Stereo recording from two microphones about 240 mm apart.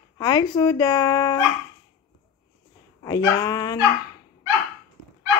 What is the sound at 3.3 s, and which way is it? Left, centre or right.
Speech, centre.